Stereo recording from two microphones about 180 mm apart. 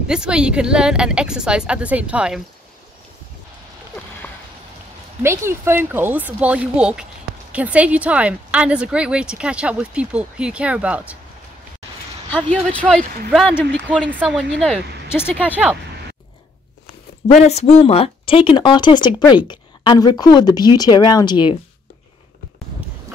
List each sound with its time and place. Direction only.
0.0 s speech: 5° right (ahead or behind)
5.2 s a woman's voice: 15° right (ahead or behind)
13.3 s speech: centre (ahead or behind)
15.5 s speech: 10° right (ahead or behind)
17.3 s speech: 40° left (ahead or behind)